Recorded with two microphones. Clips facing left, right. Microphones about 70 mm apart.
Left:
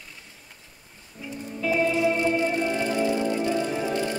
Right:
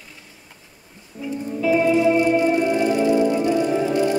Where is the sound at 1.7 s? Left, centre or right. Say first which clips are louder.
Right 6 dB; centre.